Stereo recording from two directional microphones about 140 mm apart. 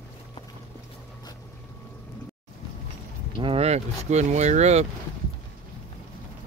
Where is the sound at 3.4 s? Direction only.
45° right (ahead or behind).